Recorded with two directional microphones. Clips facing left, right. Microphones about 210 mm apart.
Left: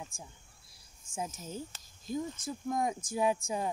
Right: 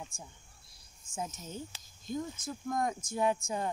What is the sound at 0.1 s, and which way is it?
Speech, 30° left (ahead or behind).